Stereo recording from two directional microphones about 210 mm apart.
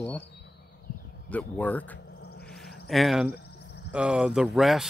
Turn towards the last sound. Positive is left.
turn(degrees=0)  # may be behind; listen again after turning